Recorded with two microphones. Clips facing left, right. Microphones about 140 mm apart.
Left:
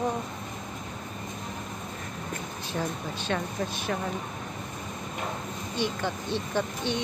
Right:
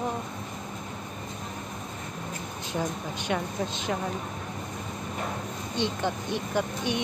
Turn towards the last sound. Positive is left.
turn(degrees=-15)  # may be behind; listen again after turning